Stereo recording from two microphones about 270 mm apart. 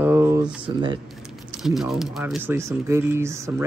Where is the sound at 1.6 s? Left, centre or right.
Centre.